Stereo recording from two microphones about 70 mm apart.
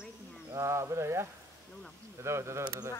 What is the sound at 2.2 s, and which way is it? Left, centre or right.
Speech, right.